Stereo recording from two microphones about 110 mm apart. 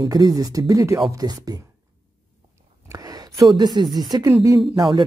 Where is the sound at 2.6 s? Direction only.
30° right (ahead or behind).